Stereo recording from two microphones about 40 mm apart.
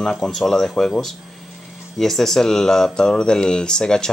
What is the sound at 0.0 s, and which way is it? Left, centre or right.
Speech, centre.